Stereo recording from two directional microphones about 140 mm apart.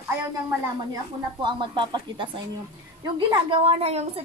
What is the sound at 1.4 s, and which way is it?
A woman's voice, 35° right (ahead or behind).